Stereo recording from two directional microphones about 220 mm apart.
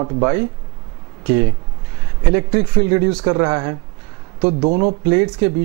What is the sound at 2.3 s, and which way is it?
Speech, 20° right (ahead or behind).